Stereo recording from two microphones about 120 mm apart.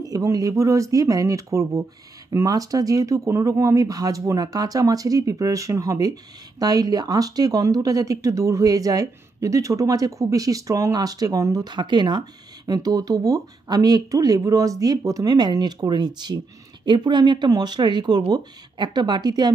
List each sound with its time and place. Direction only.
0.0 s speech: 30° right (ahead or behind)